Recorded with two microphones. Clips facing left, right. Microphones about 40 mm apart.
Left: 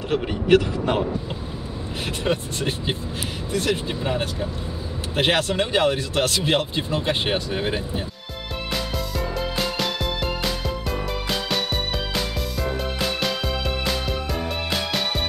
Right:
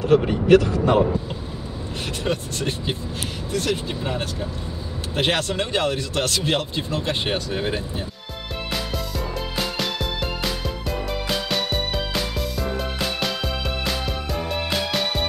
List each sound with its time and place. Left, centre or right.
0.1 s speech: left
2.2 s speech: centre
11.2 s music: centre
14.7 s music: centre